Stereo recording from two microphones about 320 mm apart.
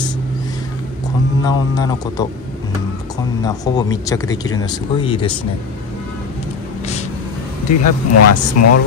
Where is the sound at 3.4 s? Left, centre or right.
Centre.